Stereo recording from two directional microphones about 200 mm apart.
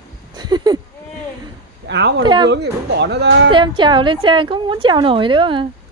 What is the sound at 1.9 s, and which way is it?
Speech, 60° right (ahead or behind).